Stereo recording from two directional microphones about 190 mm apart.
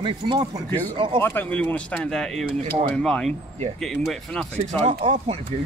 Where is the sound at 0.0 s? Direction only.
25° right (ahead or behind).